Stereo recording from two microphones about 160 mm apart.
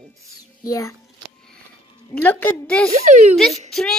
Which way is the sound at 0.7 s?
20° left (ahead or behind).